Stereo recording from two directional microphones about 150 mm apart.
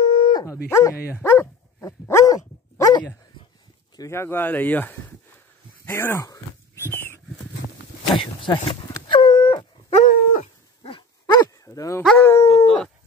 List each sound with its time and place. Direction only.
0.0 s dog: 35° left (ahead or behind)
0.7 s speech: 20° left (ahead or behind)
1.1 s dog: 15° left (ahead or behind)
3.9 s speech: 20° left (ahead or behind)
5.9 s a sound: 15° left (ahead or behind)
8.2 s a sound: 35° left (ahead or behind)
10.0 s dog: 65° left (ahead or behind)
10.4 s dog: 35° left (ahead or behind); by 12.6 s 20° left (ahead or behind)
12.6 s dog: 5° left (ahead or behind)